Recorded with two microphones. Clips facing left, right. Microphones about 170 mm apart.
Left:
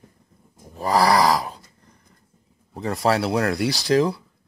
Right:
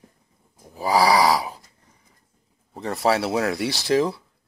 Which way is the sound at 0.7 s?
Centre (ahead or behind).